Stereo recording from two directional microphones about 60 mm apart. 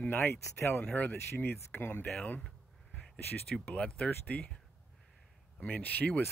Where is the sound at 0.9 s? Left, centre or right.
Left.